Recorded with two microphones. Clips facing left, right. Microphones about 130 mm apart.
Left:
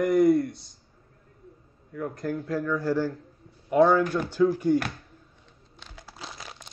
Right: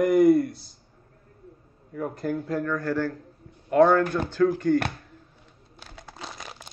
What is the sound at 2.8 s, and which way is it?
Speech, 15° left (ahead or behind).